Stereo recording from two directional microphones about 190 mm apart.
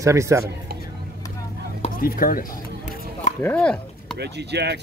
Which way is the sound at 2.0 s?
50° left (ahead or behind).